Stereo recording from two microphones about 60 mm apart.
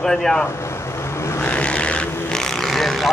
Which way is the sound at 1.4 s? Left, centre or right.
Left.